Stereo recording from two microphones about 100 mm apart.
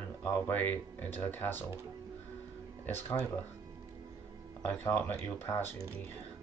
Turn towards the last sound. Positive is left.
turn(degrees=20)  # may be behind; listen again after turning